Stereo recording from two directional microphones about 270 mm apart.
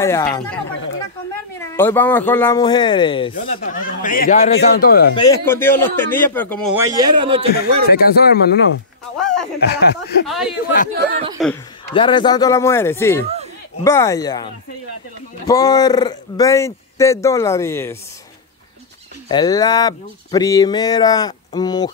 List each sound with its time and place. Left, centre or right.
0.0 s speech: centre
1.6 s speech: centre
3.3 s speech: left
5.1 s speech: centre
6.8 s a man's voice: centre
7.9 s speech: left
9.2 s a sound: centre
9.6 s speech: left
10.2 s speech: centre
11.9 s speech: centre
19.2 s speech: centre